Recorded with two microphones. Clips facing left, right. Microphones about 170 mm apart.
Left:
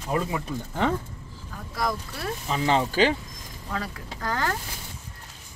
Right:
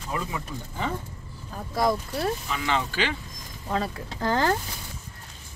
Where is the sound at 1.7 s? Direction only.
25° right (ahead or behind).